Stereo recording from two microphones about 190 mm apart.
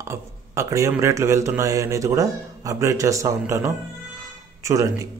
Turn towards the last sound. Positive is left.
turn(degrees=-15)  # may be behind; listen again after turning